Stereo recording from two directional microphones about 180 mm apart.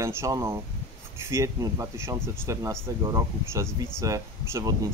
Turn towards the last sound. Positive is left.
turn(degrees=-15)  # may be behind; listen again after turning